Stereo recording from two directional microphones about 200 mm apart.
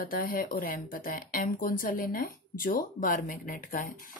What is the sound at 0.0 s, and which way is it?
Speech, 45° left (ahead or behind).